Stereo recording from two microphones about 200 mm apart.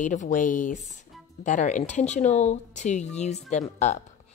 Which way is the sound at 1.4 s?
35° left (ahead or behind).